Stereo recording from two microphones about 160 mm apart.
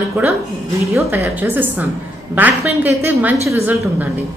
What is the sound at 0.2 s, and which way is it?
Speech, 15° right (ahead or behind).